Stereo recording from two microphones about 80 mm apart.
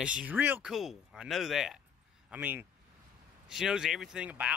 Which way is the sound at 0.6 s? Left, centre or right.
Centre.